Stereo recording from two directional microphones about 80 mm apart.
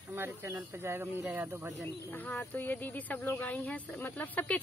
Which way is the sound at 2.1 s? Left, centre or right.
Left.